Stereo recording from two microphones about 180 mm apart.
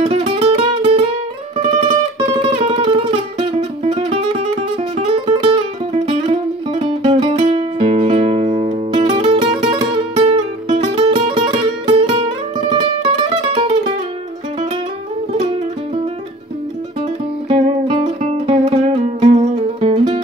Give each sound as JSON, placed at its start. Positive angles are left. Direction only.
{"t": 0.0, "sound": "music", "side_deg": -30}
{"t": 17.5, "sound": "music", "side_deg": -30}